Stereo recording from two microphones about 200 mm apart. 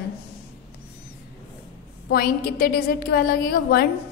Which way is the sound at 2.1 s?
50° left (ahead or behind).